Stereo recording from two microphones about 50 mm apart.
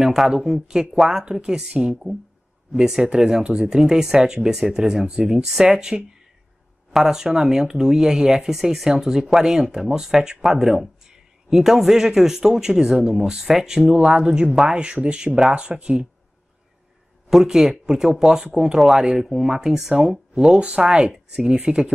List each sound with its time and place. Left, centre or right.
0.0 s a man's voice: centre
17.3 s a man's voice: centre